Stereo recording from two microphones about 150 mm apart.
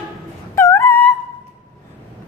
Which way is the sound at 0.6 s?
20° left (ahead or behind).